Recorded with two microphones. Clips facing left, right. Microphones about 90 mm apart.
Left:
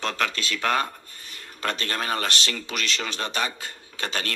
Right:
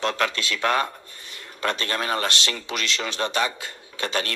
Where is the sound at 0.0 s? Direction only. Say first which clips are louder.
Right 3 dB; 35° right (ahead or behind).